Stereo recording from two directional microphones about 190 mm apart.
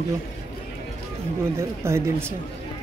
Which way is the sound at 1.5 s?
15° right (ahead or behind).